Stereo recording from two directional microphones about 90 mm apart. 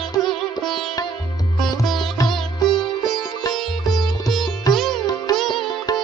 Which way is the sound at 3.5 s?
Centre (ahead or behind).